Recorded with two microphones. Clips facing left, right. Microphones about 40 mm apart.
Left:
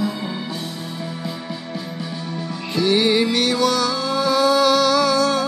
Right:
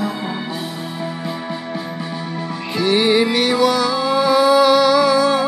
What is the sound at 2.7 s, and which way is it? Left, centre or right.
Music, centre.